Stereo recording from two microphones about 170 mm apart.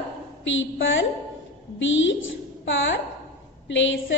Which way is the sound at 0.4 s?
90° left.